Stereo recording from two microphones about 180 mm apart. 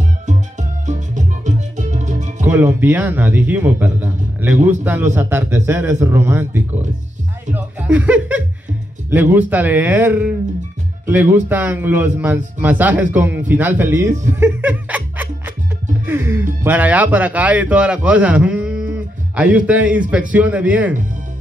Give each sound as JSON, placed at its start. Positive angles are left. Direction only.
{"t": 0.3, "sound": "music", "side_deg": -45}
{"t": 2.4, "sound": "speech", "side_deg": -10}
{"t": 11.3, "sound": "speech", "side_deg": -10}
{"t": 14.4, "sound": "laughter", "side_deg": -10}
{"t": 16.1, "sound": "speech", "side_deg": -10}